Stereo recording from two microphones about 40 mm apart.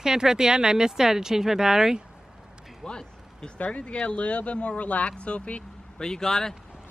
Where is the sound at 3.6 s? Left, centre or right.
Left.